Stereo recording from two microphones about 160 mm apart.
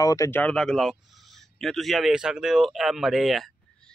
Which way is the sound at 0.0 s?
20° left (ahead or behind).